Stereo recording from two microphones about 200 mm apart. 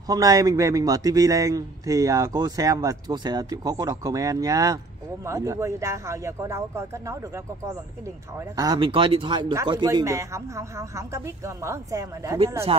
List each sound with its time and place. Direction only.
0.1 s speech: 20° right (ahead or behind)
8.5 s speech: 20° right (ahead or behind)